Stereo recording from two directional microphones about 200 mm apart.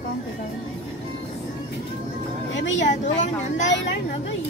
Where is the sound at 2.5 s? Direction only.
65° left (ahead or behind).